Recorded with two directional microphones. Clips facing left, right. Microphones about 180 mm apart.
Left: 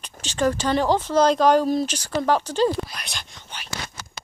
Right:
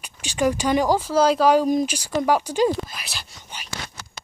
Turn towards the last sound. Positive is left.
turn(degrees=-5)  # may be behind; listen again after turning